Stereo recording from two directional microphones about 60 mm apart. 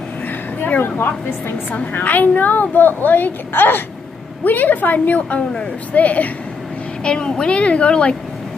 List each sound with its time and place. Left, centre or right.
0.7 s a woman's voice: left; by 8.2 s centre